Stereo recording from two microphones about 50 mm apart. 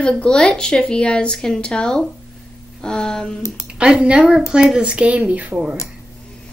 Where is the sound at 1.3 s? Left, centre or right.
Centre.